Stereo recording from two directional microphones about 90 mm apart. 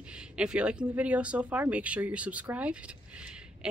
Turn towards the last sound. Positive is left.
turn(degrees=-10)  # may be behind; listen again after turning